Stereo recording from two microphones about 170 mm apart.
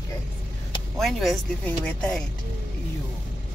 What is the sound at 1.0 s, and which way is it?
Speech, centre (ahead or behind).